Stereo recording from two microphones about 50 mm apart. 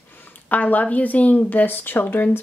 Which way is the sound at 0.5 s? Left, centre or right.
Left.